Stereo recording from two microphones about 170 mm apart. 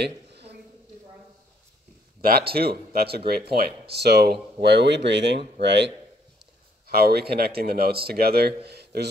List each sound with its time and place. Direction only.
0.0 s a sound: 75° right (ahead or behind)
2.2 s a man's voice: 65° right (ahead or behind); by 5.9 s 90° right
6.9 s a man's voice: 65° right (ahead or behind)